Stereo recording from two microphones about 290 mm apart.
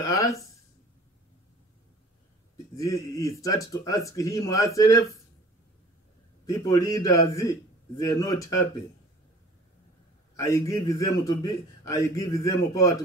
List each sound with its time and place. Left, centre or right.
0.0 s speech: centre
2.5 s speech: centre
6.4 s speech: centre
10.3 s speech: centre